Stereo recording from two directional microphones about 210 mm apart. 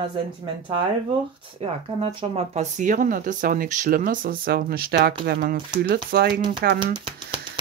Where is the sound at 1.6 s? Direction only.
25° right (ahead or behind); by 6.4 s 45° right (ahead or behind).